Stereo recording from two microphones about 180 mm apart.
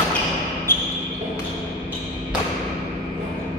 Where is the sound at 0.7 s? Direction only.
10° left (ahead or behind).